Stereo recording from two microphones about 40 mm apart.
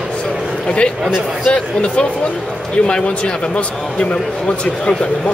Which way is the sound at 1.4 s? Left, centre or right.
Left.